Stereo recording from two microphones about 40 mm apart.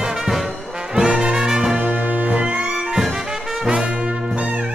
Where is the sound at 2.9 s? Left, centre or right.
Centre.